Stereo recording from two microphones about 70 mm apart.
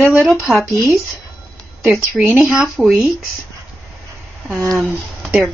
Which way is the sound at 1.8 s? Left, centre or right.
Centre.